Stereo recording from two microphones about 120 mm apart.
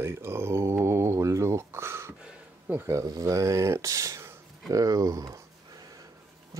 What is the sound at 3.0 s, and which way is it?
Speech, 30° right (ahead or behind).